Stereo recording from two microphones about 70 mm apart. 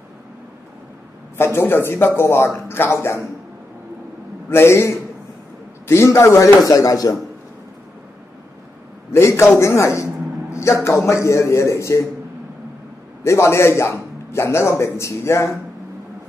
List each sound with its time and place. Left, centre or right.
1.4 s speech: left
4.5 s speech: left
9.1 s a man's voice: left
13.2 s speech: left